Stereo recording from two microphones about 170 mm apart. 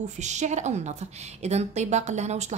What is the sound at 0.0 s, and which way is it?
A woman's voice, 45° right (ahead or behind).